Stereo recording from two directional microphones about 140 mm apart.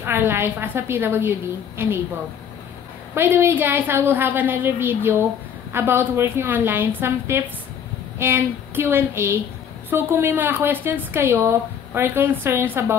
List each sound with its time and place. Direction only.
0.0 s a woman's voice: 15° right (ahead or behind)
3.2 s a woman's voice: 15° right (ahead or behind)